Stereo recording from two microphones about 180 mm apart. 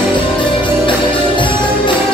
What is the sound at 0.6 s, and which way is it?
Music, 25° left (ahead or behind).